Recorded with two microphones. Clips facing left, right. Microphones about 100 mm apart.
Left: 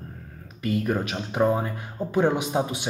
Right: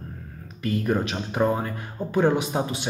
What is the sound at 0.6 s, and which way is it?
Speech, 5° left (ahead or behind).